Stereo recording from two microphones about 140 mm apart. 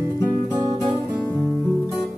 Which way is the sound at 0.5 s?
25° right (ahead or behind).